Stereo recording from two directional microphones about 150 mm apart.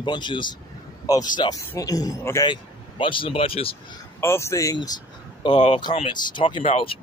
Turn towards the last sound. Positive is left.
turn(degrees=35)  # may be behind; listen again after turning